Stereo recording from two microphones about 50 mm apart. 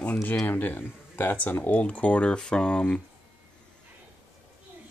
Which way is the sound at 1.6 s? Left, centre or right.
Left.